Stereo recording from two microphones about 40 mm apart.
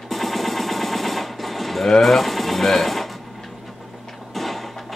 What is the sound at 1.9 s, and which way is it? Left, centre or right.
Sewing machine, centre.